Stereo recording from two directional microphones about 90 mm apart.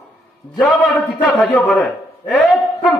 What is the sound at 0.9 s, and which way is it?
Speech, 20° left (ahead or behind).